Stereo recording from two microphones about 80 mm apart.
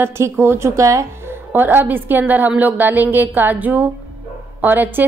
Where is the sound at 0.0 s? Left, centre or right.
Right.